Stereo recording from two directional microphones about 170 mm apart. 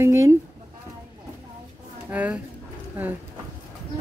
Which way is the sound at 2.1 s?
10° right (ahead or behind).